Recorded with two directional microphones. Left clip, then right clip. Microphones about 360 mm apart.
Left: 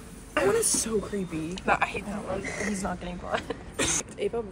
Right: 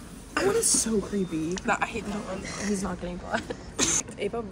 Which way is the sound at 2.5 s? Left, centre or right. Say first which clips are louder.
Left 1 dB; centre.